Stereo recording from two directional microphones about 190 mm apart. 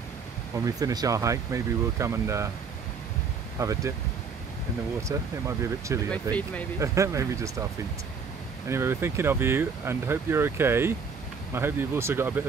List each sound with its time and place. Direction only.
0.7 s speech: 20° right (ahead or behind)
3.5 s speech: 15° right (ahead or behind)
5.0 s speech: 15° right (ahead or behind)
6.3 s speech: 10° left (ahead or behind)
6.8 s speech: 15° right (ahead or behind)
8.6 s speech: 15° right (ahead or behind)